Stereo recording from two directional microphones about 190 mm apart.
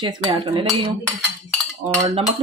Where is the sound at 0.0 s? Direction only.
25° right (ahead or behind).